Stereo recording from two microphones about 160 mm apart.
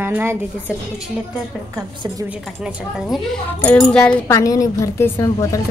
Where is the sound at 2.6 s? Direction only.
Centre (ahead or behind).